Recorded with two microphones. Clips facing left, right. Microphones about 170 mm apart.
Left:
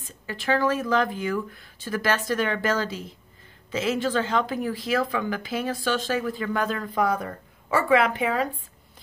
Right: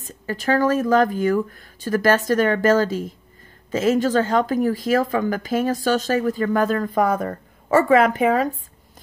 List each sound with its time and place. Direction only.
0.0 s a woman's voice: 40° right (ahead or behind)